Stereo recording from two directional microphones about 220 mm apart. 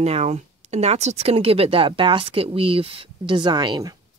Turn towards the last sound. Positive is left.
turn(degrees=-20)  # may be behind; listen again after turning